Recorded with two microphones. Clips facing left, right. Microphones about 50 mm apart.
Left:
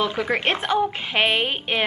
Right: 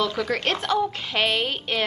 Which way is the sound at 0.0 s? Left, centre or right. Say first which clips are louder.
Left 2 dB; left.